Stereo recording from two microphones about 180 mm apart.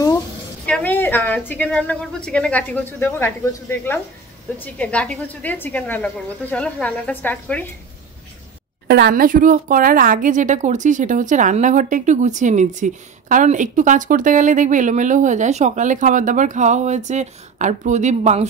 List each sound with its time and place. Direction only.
0.7 s a woman's voice: 10° left (ahead or behind)
8.8 s a woman's voice: 70° right (ahead or behind); by 18.5 s 40° right (ahead or behind)